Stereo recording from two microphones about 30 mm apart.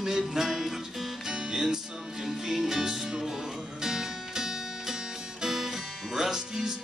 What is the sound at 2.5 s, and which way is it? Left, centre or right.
Music, centre.